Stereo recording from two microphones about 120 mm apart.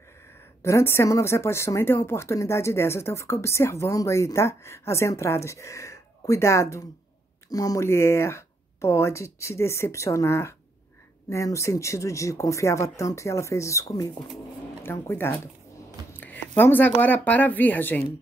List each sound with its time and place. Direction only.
0.6 s speech: 25° left (ahead or behind)